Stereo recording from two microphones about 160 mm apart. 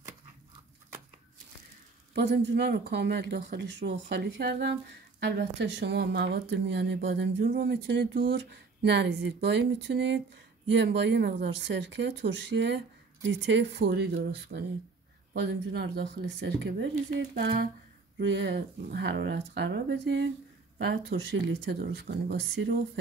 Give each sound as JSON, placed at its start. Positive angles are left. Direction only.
{"t": 2.1, "sound": "speech", "side_deg": -90}